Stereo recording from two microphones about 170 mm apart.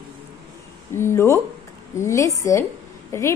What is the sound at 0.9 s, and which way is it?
A woman's voice, 15° left (ahead or behind).